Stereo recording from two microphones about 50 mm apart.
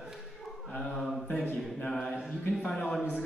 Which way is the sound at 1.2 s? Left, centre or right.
Left.